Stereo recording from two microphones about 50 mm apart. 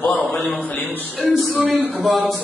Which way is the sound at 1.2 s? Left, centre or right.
Right.